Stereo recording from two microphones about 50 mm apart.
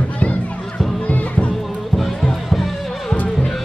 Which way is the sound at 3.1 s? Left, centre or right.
Left.